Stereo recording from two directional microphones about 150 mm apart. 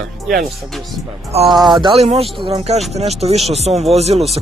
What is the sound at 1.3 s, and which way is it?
Speech, 45° right (ahead or behind).